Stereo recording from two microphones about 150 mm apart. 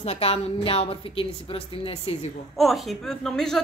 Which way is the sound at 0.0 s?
40° left (ahead or behind).